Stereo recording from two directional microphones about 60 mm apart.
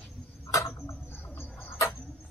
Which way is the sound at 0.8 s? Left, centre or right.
Left.